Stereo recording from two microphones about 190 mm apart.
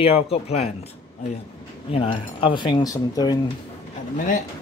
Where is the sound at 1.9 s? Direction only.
25° left (ahead or behind).